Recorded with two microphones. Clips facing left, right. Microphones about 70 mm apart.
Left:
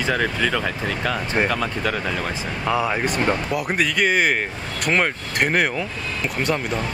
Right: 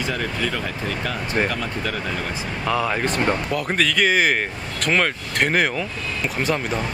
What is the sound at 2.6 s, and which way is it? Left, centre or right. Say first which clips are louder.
Speech: even; centre.